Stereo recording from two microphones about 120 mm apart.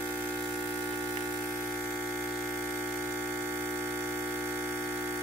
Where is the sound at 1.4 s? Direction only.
15° left (ahead or behind).